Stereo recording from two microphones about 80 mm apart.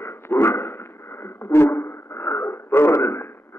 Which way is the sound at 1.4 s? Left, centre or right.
Left.